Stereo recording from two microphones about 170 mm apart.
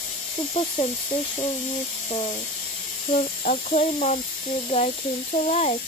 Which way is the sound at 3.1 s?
45° left (ahead or behind).